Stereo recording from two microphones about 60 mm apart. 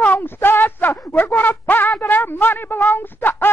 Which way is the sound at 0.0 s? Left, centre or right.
Left.